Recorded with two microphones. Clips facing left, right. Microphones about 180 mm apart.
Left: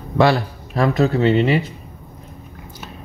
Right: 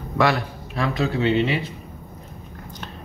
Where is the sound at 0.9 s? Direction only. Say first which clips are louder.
Left 3 dB; 45° left (ahead or behind).